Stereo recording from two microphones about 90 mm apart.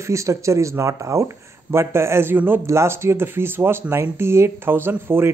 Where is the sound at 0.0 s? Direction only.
35° right (ahead or behind).